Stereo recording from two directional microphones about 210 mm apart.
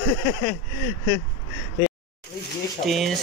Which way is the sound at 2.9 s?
Centre (ahead or behind).